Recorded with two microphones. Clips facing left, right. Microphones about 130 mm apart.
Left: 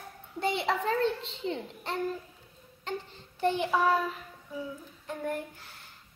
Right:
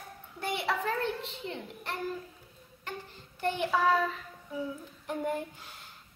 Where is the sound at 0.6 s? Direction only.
25° left (ahead or behind).